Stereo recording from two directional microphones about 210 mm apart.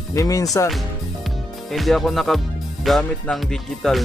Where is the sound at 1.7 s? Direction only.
Centre (ahead or behind).